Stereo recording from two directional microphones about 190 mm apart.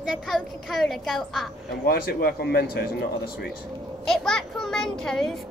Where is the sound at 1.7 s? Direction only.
55° left (ahead or behind).